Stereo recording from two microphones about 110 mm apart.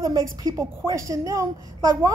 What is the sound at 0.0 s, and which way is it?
Speech, 35° right (ahead or behind).